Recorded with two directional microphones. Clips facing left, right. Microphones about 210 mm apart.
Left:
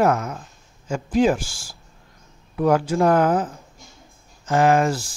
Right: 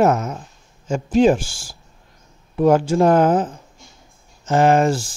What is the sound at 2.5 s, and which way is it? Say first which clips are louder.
Speech: right 4 dB; 25° right (ahead or behind).